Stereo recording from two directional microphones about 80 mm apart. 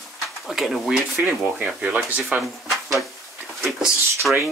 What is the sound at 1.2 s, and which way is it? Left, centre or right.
Speech, right.